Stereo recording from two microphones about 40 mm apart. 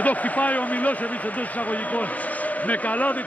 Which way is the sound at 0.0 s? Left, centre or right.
Left.